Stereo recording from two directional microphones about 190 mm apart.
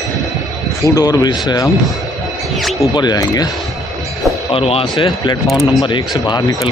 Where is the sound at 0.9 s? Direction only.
20° left (ahead or behind).